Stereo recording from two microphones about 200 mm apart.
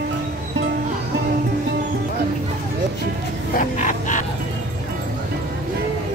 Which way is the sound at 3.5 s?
40° left (ahead or behind).